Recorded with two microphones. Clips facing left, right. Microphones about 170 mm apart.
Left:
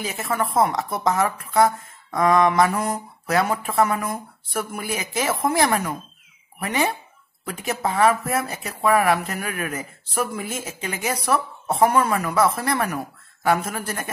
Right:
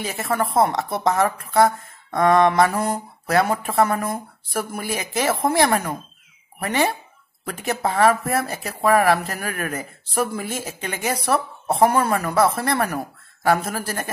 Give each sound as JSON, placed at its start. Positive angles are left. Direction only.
{"t": 0.0, "sound": "speech", "side_deg": -35}